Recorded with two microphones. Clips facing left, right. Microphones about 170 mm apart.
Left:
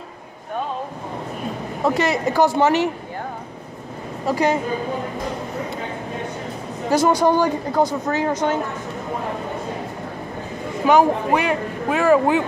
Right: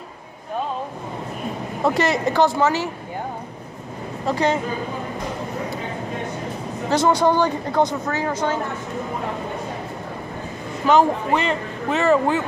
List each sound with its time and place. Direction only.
2.0 s speech: 5° left (ahead or behind)
2.5 s speech: 20° left (ahead or behind)
4.3 s speech: 10° left (ahead or behind)
6.9 s speech: 10° left (ahead or behind)
10.9 s speech: 15° left (ahead or behind)